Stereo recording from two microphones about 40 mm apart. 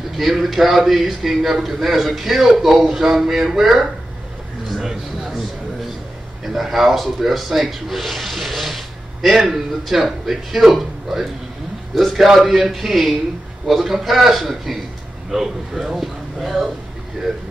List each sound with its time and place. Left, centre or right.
0.2 s a man's voice: centre
4.7 s a sound: centre
6.4 s a man's voice: centre